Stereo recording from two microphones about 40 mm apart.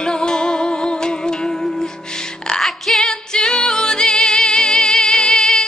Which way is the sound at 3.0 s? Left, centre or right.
Centre.